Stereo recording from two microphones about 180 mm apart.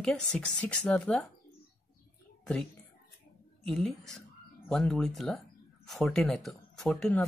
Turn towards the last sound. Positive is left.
turn(degrees=5)  # may be behind; listen again after turning